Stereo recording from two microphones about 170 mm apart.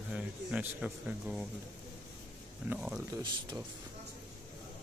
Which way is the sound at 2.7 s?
Centre (ahead or behind).